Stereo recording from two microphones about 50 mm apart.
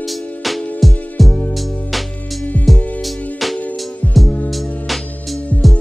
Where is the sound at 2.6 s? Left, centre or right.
Centre.